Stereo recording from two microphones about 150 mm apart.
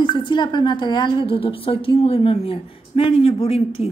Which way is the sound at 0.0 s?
30° left (ahead or behind).